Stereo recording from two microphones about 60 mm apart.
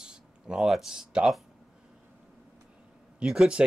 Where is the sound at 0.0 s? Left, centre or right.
Centre.